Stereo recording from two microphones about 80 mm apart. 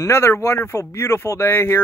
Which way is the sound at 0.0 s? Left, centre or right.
Left.